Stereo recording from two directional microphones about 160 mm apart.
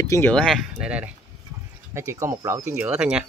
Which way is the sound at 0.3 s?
5° left (ahead or behind).